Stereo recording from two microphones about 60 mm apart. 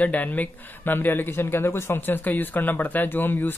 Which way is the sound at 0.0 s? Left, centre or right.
Left.